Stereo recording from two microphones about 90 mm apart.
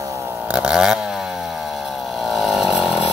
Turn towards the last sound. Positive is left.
turn(degrees=-5)  # may be behind; listen again after turning